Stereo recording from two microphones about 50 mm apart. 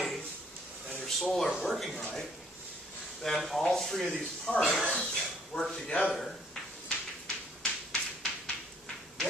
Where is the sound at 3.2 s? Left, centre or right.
Centre.